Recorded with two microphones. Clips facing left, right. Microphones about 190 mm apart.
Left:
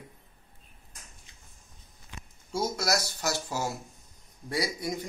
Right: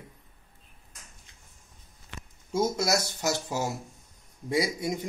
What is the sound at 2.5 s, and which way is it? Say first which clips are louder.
Speech: right 3 dB; 20° right (ahead or behind).